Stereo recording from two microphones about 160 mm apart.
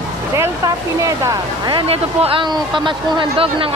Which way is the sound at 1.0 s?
20° right (ahead or behind).